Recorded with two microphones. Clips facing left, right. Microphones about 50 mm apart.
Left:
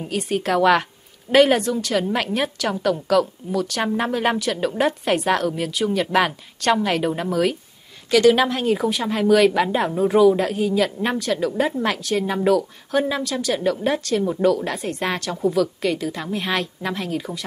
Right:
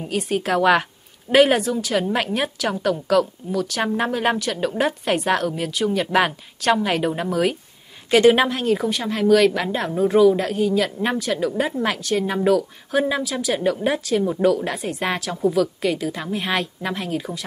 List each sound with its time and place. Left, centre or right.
0.0 s speech: centre
8.1 s a woman's voice: right
8.5 s speech: centre